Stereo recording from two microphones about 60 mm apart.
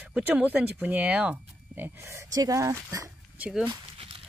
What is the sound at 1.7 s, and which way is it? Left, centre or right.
Speech, right.